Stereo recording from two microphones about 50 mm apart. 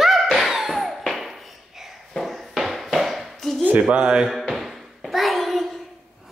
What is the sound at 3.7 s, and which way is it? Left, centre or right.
Speech, right.